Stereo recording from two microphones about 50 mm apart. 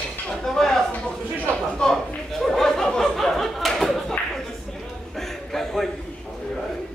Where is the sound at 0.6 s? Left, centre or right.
Centre.